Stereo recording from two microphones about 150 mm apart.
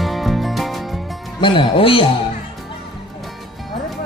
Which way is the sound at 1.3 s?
35° left (ahead or behind).